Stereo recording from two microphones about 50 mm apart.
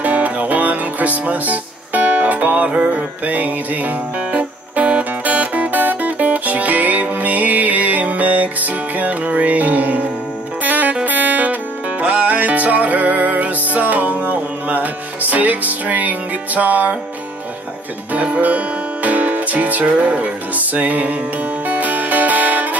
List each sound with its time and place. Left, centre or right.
0.0 s music: right
4.3 s music: right
18.1 s music: right